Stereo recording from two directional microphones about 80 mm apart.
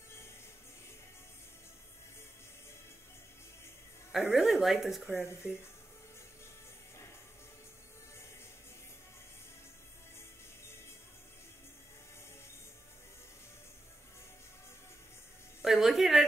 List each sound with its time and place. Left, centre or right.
4.1 s speech: centre
5.2 s speech: left
15.6 s a sound: centre